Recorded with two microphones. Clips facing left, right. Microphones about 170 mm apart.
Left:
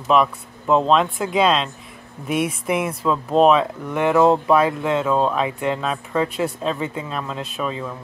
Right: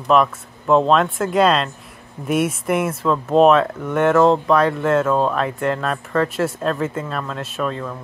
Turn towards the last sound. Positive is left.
turn(degrees=5)  # may be behind; listen again after turning